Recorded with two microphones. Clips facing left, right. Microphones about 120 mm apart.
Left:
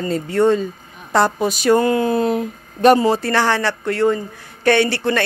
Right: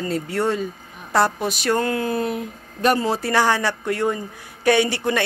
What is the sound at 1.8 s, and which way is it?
Speech, 25° left (ahead or behind).